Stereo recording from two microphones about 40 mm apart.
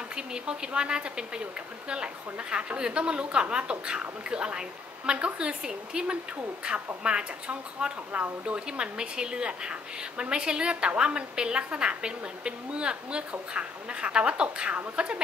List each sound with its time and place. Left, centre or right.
0.1 s a woman's voice: right
8.1 s speech: right
8.5 s a woman's voice: right